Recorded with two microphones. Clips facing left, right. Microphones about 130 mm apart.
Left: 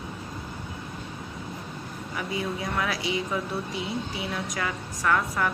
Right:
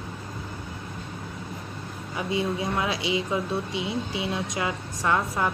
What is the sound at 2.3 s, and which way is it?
Speech, 25° right (ahead or behind).